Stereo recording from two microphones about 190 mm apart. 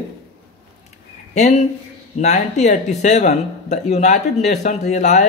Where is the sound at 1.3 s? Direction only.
35° left (ahead or behind).